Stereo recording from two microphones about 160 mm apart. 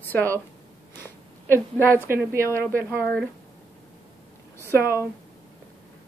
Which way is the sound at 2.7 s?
10° left (ahead or behind).